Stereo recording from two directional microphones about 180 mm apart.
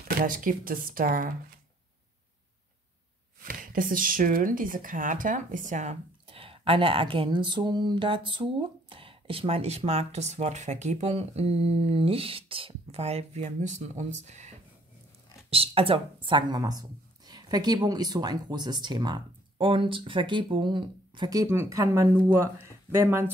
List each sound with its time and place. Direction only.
0.2 s speech: 50° right (ahead or behind)
3.4 s speech: 50° right (ahead or behind)
15.5 s speech: 30° right (ahead or behind); by 23.3 s 10° right (ahead or behind)